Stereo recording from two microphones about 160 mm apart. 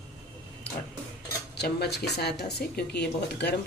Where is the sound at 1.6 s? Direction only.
90° left.